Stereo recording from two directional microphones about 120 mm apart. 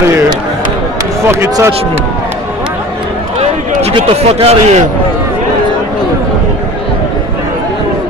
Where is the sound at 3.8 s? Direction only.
55° right (ahead or behind).